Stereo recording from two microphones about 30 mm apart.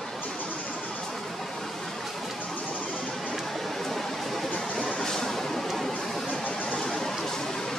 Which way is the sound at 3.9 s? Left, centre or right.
Centre.